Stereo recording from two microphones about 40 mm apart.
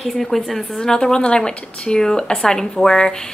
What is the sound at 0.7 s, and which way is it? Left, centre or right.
A woman's voice, centre.